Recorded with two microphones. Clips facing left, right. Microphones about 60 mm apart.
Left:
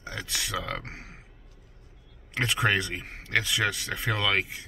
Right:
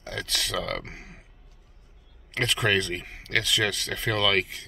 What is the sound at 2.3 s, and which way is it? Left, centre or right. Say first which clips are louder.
Speech: right 1 dB; centre.